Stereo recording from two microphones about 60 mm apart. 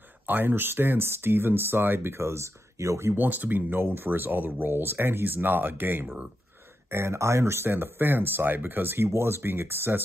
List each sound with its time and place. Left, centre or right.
0.3 s speech: right
3.2 s speech: right
6.9 s speech: right